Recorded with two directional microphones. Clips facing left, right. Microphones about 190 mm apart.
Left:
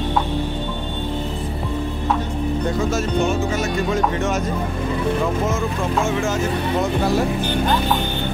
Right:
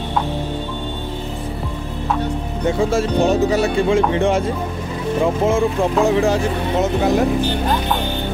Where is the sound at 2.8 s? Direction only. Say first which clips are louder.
Right 6 dB; 30° right (ahead or behind).